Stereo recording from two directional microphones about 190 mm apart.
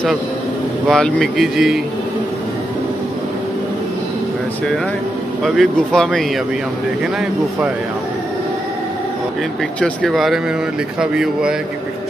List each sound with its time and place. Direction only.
0.8 s speech: centre (ahead or behind)
5.4 s speech: 5° left (ahead or behind)
9.8 s speech: centre (ahead or behind)